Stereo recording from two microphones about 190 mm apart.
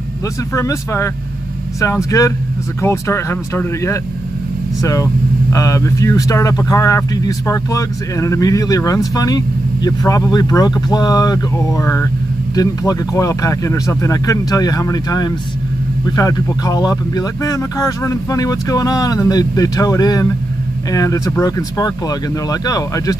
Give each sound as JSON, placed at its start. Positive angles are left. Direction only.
{"t": 0.6, "sound": "speech", "side_deg": 15}